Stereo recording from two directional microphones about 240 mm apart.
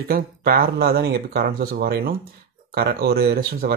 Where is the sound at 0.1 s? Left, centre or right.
Right.